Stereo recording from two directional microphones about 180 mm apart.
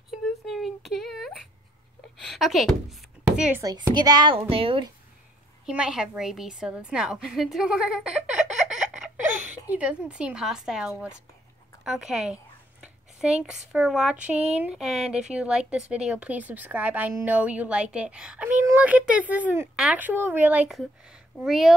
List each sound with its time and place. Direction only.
0.1 s a sound: centre (ahead or behind)
2.1 s speech: centre (ahead or behind)
3.6 s speech: 25° right (ahead or behind)
5.7 s a woman's voice: 5° right (ahead or behind)
8.6 s a sound: 5° right (ahead or behind)
9.7 s a woman's voice: 5° right (ahead or behind)
14.3 s speech: 35° right (ahead or behind)
14.6 s a woman's voice: 5° right (ahead or behind)